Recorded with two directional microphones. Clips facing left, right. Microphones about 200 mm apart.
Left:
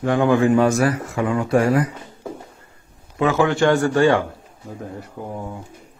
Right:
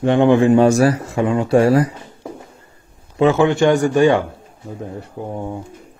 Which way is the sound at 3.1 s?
25° right (ahead or behind).